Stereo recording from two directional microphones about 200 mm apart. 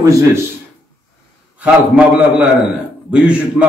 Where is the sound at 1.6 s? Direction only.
5° right (ahead or behind).